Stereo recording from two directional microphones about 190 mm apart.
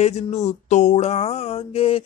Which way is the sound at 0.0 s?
35° left (ahead or behind).